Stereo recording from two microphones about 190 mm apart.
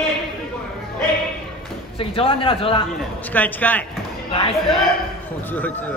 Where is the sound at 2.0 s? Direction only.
30° left (ahead or behind).